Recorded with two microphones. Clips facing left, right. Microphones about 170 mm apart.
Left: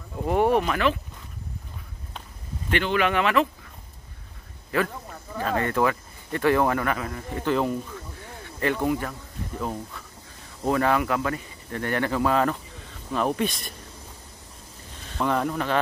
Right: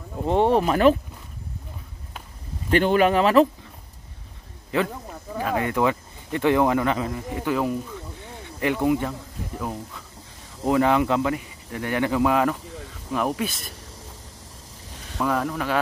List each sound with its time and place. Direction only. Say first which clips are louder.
0.2 s speech: right 2 dB; 25° right (ahead or behind)
2.7 s speech: right 5 dB; 40° right (ahead or behind)
4.6 s speech: right 1 dB; 20° right (ahead or behind)
10.6 s speech: right 3 dB; 15° right (ahead or behind)
15.1 s speech: even; centre (ahead or behind)